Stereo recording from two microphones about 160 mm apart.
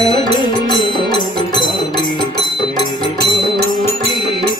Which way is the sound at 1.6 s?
25° left (ahead or behind).